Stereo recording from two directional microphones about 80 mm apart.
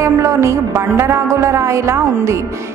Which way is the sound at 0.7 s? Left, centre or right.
Right.